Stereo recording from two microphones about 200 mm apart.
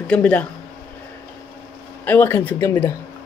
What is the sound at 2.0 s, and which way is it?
Speech, 10° left (ahead or behind).